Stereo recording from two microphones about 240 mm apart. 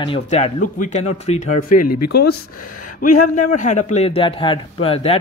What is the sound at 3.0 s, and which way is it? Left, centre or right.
Speech, left.